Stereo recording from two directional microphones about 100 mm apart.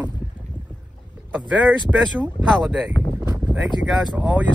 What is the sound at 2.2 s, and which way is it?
Speech, 15° right (ahead or behind).